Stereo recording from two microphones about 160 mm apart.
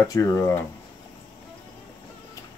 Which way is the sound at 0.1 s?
20° left (ahead or behind).